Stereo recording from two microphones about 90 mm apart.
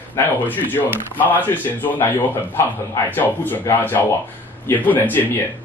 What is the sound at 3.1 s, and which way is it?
A man's voice, 20° left (ahead or behind).